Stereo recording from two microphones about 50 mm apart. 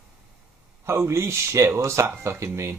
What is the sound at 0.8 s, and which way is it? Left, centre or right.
Speech, right.